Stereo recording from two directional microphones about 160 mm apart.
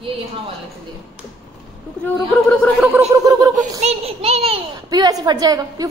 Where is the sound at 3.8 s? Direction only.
40° right (ahead or behind).